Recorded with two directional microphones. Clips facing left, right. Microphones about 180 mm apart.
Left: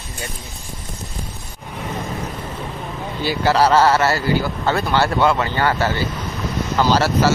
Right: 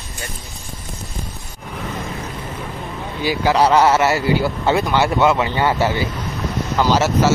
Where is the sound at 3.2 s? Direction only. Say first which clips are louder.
Right 1 dB; 10° right (ahead or behind).